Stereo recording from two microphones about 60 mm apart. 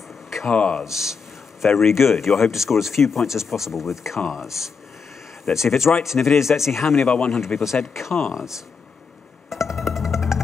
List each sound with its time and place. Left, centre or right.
0.5 s speech: centre
0.8 s speech: centre
7.1 s speech: centre
7.3 s speech: centre
9.7 s music: centre